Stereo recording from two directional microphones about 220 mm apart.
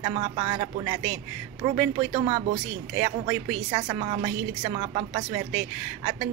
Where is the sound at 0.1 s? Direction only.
25° right (ahead or behind).